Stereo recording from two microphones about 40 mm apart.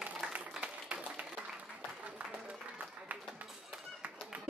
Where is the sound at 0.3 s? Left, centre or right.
Right.